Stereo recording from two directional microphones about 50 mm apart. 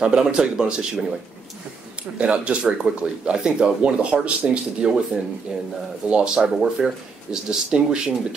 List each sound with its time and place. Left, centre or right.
0.0 s speech: centre
2.1 s speech: right